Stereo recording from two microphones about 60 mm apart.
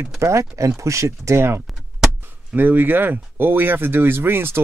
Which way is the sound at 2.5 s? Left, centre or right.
Right.